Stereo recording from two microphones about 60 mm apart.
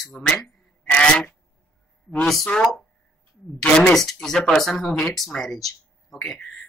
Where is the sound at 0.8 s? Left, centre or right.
Centre.